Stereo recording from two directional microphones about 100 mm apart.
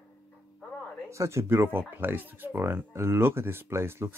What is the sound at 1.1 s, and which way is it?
Speech, 30° right (ahead or behind).